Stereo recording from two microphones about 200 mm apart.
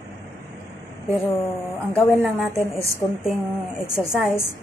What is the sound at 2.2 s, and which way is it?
Speech, 5° right (ahead or behind).